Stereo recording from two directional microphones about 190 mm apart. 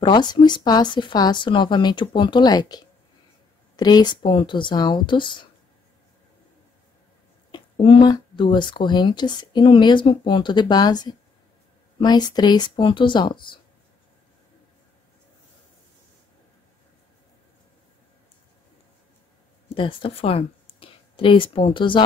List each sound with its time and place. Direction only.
0.0 s speech: 25° left (ahead or behind)
7.5 s speech: 25° left (ahead or behind)
19.7 s speech: 30° left (ahead or behind)